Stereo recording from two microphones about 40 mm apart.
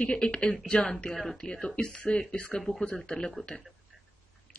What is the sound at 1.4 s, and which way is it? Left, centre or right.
Speech, left.